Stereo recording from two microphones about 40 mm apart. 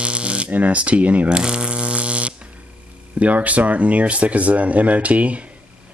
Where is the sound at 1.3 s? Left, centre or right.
Right.